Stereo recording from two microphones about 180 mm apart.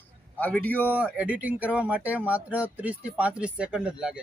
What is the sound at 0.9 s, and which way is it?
Speech, 5° right (ahead or behind).